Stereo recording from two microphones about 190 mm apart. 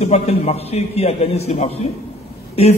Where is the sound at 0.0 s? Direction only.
35° left (ahead or behind).